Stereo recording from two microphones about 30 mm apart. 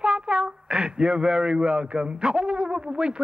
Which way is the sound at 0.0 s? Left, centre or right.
Right.